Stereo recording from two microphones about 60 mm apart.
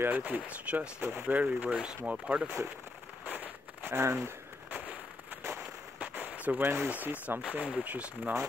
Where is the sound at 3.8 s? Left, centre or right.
Right.